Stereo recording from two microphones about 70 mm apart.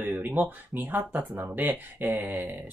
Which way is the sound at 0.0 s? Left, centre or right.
Right.